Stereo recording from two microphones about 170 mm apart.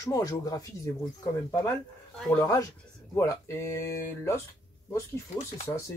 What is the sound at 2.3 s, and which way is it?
Speech, 15° left (ahead or behind).